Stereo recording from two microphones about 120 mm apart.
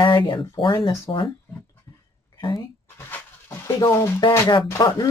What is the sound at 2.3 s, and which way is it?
Speech, 40° left (ahead or behind).